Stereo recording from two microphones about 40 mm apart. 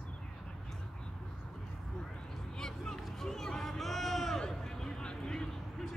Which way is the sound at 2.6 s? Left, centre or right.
Centre.